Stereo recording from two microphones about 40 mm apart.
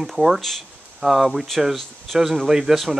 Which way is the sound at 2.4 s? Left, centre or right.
Centre.